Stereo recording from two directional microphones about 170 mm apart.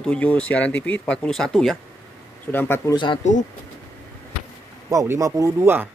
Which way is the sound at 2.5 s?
10° left (ahead or behind).